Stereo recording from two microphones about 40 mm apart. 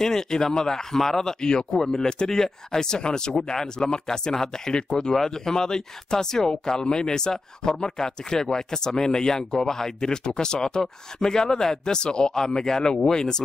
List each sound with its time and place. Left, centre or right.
0.0 s speech: centre
4.8 s speech: left
5.1 s speech: centre